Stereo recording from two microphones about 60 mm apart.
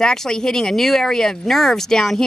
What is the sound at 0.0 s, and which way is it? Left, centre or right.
Speech, centre.